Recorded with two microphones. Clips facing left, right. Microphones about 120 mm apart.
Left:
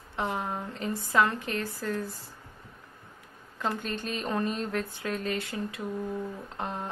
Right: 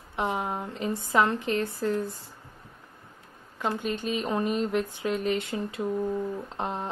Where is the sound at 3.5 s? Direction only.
10° right (ahead or behind).